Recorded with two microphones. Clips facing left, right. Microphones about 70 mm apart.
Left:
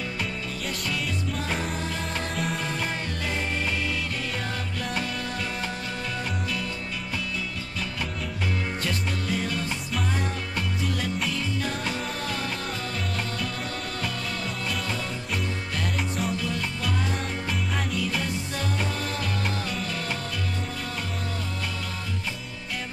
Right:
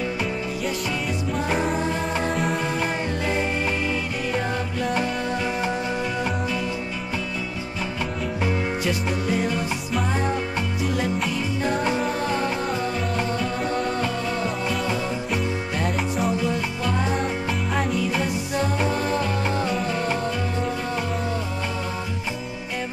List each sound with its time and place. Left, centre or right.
2.3 s music: centre
8.8 s music: centre
10.8 s music: centre
16.3 s music: centre